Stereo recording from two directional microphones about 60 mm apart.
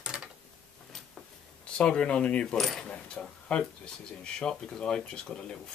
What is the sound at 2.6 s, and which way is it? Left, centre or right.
Speech, centre.